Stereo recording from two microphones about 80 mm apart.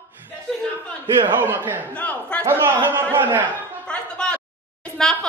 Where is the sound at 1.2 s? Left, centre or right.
Right.